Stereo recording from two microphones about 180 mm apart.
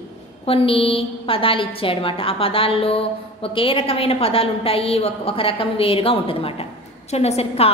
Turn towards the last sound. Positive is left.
turn(degrees=35)  # may be behind; listen again after turning